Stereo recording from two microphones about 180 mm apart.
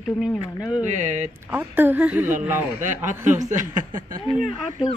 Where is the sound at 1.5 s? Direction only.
10° right (ahead or behind).